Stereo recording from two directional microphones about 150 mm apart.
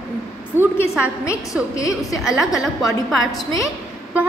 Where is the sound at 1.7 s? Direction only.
20° left (ahead or behind).